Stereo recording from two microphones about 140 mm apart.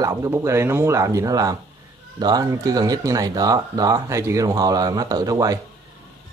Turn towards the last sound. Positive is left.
turn(degrees=-25)  # may be behind; listen again after turning